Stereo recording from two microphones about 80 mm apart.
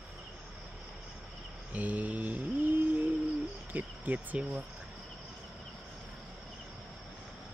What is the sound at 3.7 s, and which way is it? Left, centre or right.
Speech, right.